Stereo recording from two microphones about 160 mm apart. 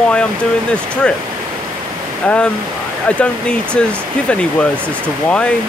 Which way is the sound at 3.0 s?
5° left (ahead or behind).